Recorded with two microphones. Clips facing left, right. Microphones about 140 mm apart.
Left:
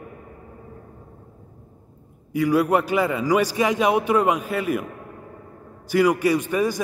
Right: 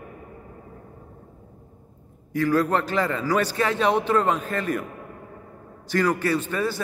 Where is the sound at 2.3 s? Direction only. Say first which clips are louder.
Left 2 dB; 10° left (ahead or behind).